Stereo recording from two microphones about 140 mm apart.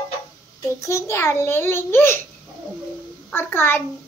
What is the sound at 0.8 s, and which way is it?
A child's voice, 20° left (ahead or behind).